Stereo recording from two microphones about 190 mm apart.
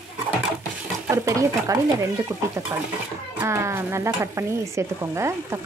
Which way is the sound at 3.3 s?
15° right (ahead or behind).